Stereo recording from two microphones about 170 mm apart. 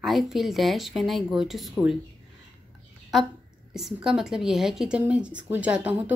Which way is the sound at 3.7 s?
Centre (ahead or behind).